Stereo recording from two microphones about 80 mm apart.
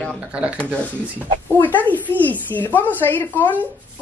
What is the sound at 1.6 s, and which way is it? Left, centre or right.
A woman's voice, left.